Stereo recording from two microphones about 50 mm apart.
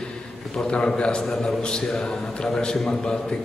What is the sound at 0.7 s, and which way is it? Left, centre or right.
A man's voice, centre.